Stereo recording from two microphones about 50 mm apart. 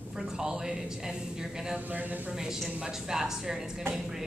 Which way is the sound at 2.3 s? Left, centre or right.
Centre.